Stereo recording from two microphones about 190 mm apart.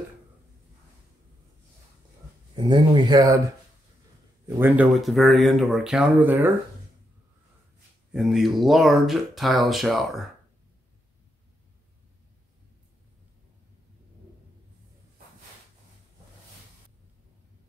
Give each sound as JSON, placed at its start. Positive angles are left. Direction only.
{"t": 2.5, "sound": "speech", "side_deg": -25}
{"t": 4.5, "sound": "speech", "side_deg": -10}
{"t": 8.1, "sound": "speech", "side_deg": 0}